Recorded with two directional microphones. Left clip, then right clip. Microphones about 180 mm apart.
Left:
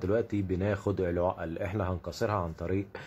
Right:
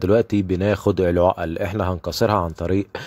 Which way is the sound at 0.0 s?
45° right (ahead or behind).